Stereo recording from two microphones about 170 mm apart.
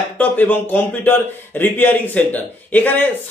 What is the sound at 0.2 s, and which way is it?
Speech, 10° left (ahead or behind).